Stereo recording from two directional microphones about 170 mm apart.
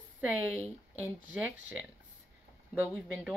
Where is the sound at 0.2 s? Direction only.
10° right (ahead or behind).